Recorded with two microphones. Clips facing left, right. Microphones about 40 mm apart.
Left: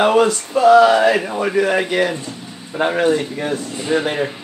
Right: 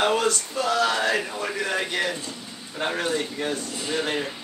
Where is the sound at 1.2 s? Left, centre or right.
Left.